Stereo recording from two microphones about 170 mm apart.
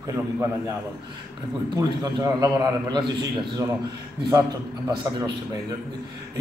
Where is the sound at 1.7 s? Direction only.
20° right (ahead or behind).